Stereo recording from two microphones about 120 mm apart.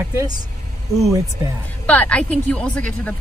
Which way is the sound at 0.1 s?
25° right (ahead or behind).